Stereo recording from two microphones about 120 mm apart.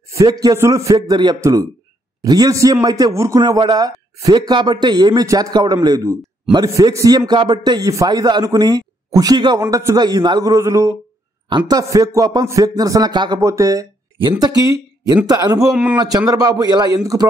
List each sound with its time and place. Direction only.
0.1 s a man's voice: 30° right (ahead or behind)
11.4 s a man's voice: 40° right (ahead or behind)
15.2 s a man's voice: 30° right (ahead or behind)
15.7 s speech: 10° right (ahead or behind)
16.3 s a man's voice: 30° right (ahead or behind)